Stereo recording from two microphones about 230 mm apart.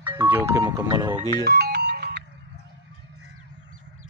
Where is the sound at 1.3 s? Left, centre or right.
Right.